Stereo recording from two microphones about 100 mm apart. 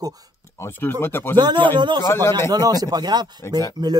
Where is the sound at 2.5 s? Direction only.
40° right (ahead or behind).